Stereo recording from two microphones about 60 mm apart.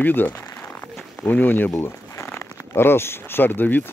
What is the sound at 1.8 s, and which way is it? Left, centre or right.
Speech, left.